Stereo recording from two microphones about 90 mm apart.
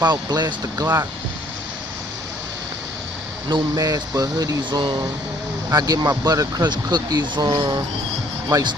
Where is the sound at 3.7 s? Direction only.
40° right (ahead or behind).